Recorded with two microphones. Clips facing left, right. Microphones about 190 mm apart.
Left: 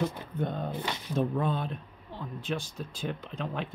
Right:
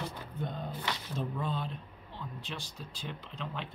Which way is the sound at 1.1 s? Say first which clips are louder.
Left 9 dB; 55° left (ahead or behind).